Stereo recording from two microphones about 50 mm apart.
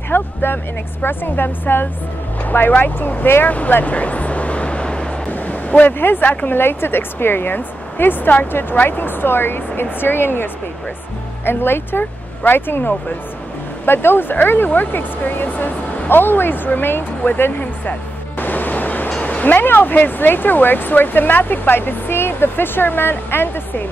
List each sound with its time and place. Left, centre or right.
0.1 s speech: left
3.4 s vehicle: left
5.3 s a sound: left
5.9 s speech: left
18.4 s music: left
19.2 s speech: left